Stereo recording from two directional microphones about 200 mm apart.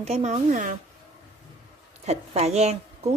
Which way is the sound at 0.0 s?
35° right (ahead or behind).